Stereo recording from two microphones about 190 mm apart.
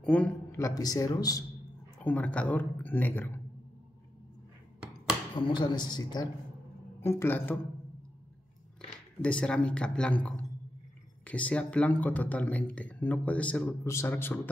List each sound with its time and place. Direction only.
0.0 s speech: 5° left (ahead or behind)
2.0 s speech: 5° left (ahead or behind)
5.3 s a woman's voice: 25° left (ahead or behind)
9.2 s speech: 5° left (ahead or behind)